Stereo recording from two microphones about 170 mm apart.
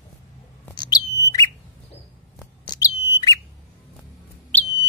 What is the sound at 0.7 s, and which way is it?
Bird, 25° left (ahead or behind).